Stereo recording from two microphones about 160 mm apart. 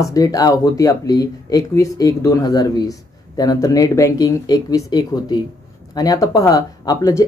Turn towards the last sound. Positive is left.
turn(degrees=20)  # may be behind; listen again after turning